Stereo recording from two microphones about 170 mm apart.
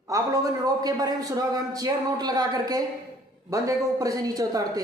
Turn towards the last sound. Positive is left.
turn(degrees=-20)  # may be behind; listen again after turning